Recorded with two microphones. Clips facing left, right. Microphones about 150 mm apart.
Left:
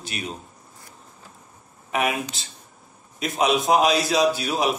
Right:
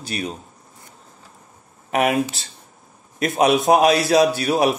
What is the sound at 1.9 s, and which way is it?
Speech, 55° right (ahead or behind).